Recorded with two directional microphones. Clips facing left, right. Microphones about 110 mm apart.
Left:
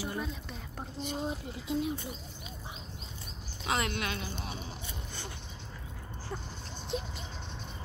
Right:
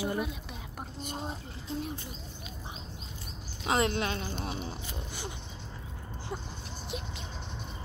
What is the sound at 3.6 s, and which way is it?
Speech, 25° right (ahead or behind).